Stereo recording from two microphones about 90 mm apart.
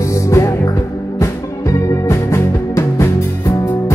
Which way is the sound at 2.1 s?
30° left (ahead or behind).